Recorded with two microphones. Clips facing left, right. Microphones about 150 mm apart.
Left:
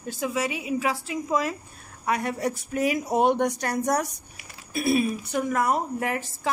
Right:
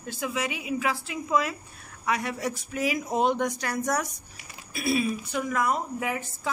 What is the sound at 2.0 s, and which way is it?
A woman's voice, 50° left (ahead or behind).